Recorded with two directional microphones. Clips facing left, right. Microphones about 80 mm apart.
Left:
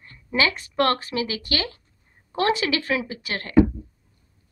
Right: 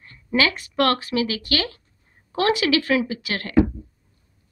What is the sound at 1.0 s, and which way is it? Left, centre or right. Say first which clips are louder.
A woman's voice: right 3 dB; left.